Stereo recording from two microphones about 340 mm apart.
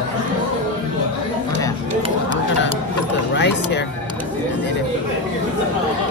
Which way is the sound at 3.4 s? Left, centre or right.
Left.